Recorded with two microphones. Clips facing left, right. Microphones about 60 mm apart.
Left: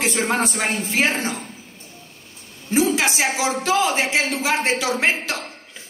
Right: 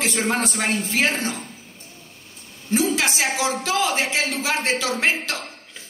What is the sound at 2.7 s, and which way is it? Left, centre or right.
A woman's voice, left.